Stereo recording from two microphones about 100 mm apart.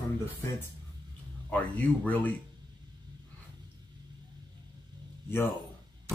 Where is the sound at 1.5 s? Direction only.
15° left (ahead or behind).